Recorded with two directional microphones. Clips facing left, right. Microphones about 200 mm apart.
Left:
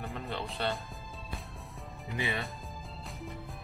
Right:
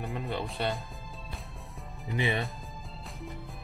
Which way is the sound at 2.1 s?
15° right (ahead or behind).